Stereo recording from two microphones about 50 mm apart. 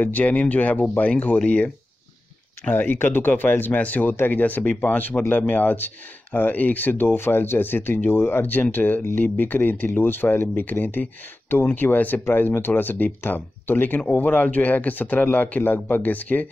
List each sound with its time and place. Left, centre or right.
0.0 s speech: left
2.7 s speech: left